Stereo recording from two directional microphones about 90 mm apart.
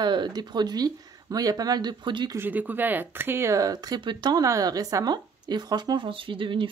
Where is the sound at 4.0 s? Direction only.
55° right (ahead or behind).